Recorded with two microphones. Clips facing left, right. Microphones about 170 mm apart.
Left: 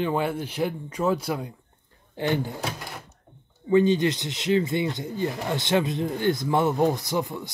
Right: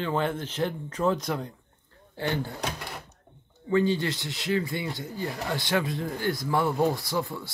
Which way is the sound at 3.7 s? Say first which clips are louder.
Left 5 dB; 20° left (ahead or behind).